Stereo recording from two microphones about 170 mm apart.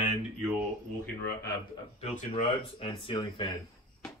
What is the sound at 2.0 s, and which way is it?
Speech, 40° left (ahead or behind).